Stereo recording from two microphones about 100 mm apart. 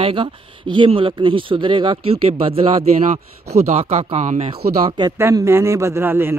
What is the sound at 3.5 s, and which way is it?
Speech, 90° right.